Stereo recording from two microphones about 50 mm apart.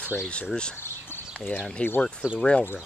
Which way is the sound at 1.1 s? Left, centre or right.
Left.